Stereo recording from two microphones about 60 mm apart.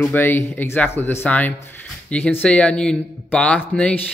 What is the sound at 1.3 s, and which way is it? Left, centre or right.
Speech, left.